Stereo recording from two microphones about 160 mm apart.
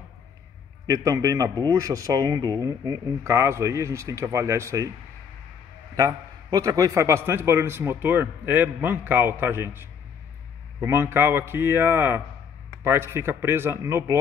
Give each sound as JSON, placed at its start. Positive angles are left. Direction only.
{"t": 0.8, "sound": "a man's voice", "side_deg": -20}
{"t": 5.9, "sound": "a man's voice", "side_deg": -20}